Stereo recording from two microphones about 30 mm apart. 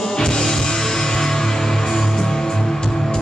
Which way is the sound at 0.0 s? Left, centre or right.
Left.